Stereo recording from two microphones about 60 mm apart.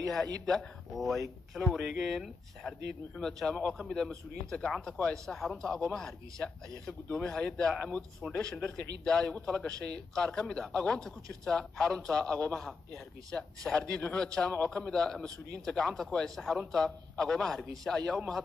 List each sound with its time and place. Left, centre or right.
0.0 s a man's voice: centre
5.1 s a man's voice: centre